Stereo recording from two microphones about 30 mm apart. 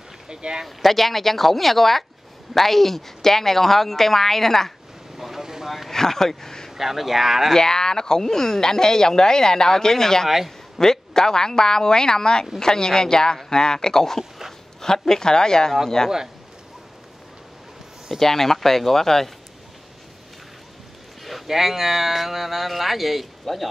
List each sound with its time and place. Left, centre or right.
0.3 s speech: right
0.7 s speech: centre
5.1 s vehicle: centre
5.9 s speech: centre
6.8 s speech: centre
7.5 s speech: left
10.2 s speech: centre
10.8 s speech: centre
18.2 s speech: centre
21.2 s a sound: centre
21.5 s speech: centre